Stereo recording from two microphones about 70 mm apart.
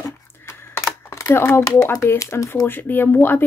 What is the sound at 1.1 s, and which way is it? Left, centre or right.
Speech, left.